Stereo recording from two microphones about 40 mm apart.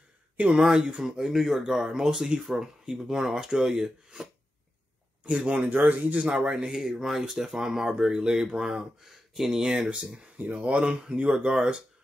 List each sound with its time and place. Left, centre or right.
0.6 s speech: centre
5.4 s speech: centre
5.7 s speech: right
6.2 s speech: right; by 9.6 s centre
9.6 s speech: right
10.3 s speech: right